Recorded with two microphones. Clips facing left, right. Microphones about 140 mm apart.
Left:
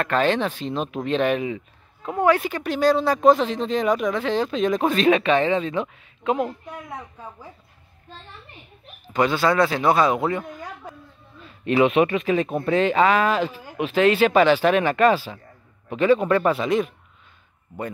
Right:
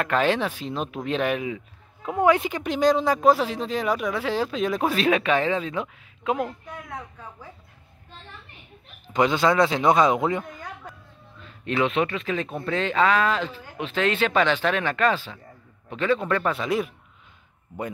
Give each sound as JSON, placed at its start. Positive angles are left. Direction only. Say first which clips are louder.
{"t": 0.0, "sound": "speech", "louder": "left 2 dB", "side_deg": -10}
{"t": 9.1, "sound": "speech", "louder": "even", "side_deg": -20}
{"t": 11.4, "sound": "speech", "louder": "left 6 dB", "side_deg": 10}
{"t": 16.6, "sound": "speech", "louder": "left 3 dB", "side_deg": -5}